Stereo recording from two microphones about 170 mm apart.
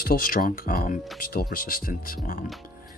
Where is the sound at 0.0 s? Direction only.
55° left (ahead or behind).